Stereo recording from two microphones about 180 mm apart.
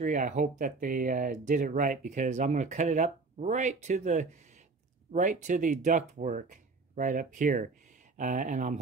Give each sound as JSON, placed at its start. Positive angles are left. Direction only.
{"t": 0.0, "sound": "speech", "side_deg": -40}